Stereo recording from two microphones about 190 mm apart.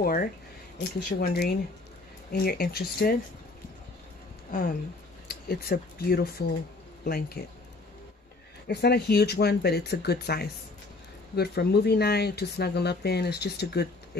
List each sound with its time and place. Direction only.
0.0 s speech: 50° left (ahead or behind)
4.5 s speech: 45° left (ahead or behind)
8.6 s speech: 60° left (ahead or behind)